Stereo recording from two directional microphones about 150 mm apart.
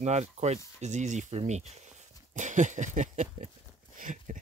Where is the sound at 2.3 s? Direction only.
55° right (ahead or behind).